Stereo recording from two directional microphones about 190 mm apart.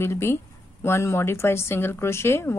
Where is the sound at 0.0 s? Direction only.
15° left (ahead or behind).